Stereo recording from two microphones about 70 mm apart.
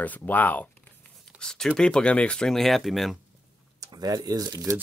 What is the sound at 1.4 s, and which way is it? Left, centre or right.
Speech, centre.